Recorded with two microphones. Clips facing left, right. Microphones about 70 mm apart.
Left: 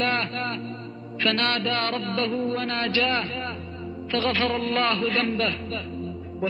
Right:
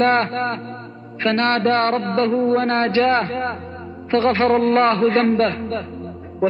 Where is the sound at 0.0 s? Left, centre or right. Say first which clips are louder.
Right 9 dB; right.